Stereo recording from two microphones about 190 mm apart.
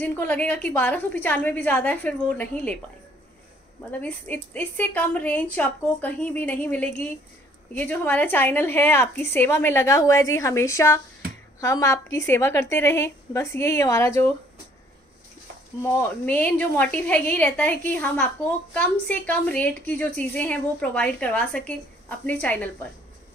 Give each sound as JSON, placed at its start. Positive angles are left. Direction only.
{"t": 0.0, "sound": "a woman's voice", "side_deg": 10}
{"t": 3.9, "sound": "a woman's voice", "side_deg": 10}
{"t": 16.3, "sound": "a woman's voice", "side_deg": 10}